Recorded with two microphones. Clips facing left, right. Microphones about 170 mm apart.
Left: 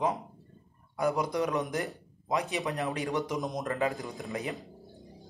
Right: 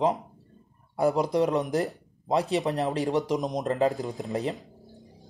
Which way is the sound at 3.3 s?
20° right (ahead or behind).